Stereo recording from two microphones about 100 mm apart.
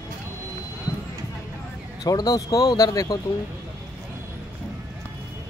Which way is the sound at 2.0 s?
40° left (ahead or behind).